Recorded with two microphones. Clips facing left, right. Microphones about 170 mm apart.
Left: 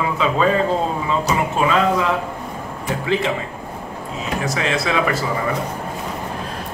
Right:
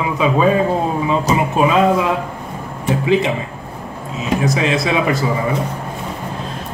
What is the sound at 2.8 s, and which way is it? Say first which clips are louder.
Speech: right 5 dB; 20° right (ahead or behind).